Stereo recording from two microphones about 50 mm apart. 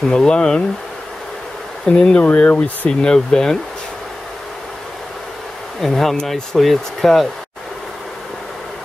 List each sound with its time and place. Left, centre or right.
0.1 s speech: centre
1.9 s speech: centre
5.8 s speech: centre